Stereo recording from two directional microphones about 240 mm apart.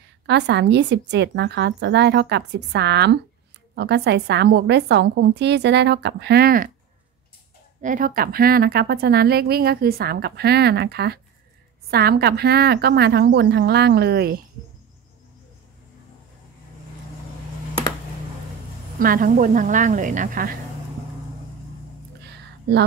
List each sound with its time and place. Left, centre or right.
0.3 s a woman's voice: right
7.8 s a woman's voice: right
18.9 s a woman's voice: right
22.2 s a sound: right